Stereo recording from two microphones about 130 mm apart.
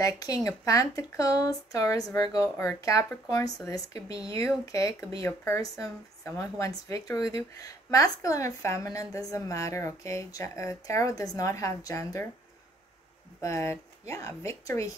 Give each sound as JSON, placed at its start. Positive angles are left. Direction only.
{"t": 0.0, "sound": "speech", "side_deg": 25}
{"t": 13.4, "sound": "speech", "side_deg": 20}